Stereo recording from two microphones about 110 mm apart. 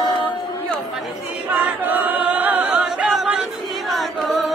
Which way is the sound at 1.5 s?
15° right (ahead or behind).